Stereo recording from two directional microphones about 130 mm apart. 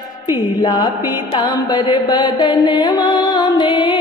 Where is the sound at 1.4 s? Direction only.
30° left (ahead or behind).